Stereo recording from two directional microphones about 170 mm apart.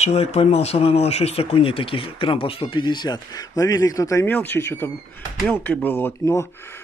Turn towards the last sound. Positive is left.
turn(degrees=15)  # may be behind; listen again after turning